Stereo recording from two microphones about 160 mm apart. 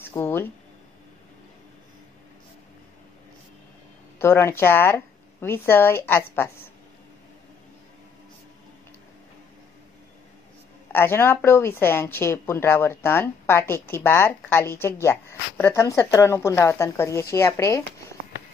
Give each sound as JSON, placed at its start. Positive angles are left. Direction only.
{"t": 0.0, "sound": "a sound", "side_deg": 15}
{"t": 4.2, "sound": "a woman's voice", "side_deg": 15}
{"t": 10.9, "sound": "a woman's voice", "side_deg": 15}